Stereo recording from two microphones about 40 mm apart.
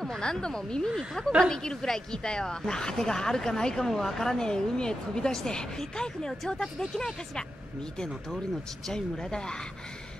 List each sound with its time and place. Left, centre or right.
0.0 s speech: centre
0.8 s speech: centre
8.8 s speech: centre